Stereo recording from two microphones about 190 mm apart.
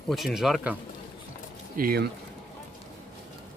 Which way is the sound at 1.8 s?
50° right (ahead or behind).